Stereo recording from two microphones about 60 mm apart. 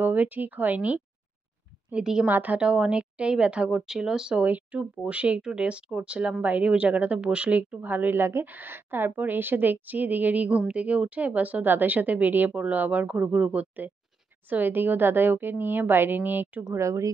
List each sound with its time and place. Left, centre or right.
0.0 s speech: right
2.2 s a woman's voice: right; by 4.5 s centre
4.5 s speech: right
16.7 s speech: right